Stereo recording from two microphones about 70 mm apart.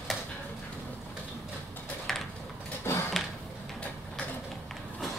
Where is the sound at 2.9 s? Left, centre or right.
Left.